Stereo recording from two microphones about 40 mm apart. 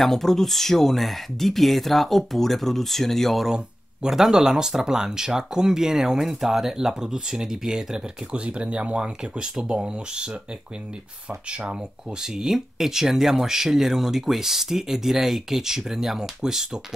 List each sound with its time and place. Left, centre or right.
0.0 s speech: centre
4.1 s speech: centre
8.5 s speech: right
12.2 s speech: centre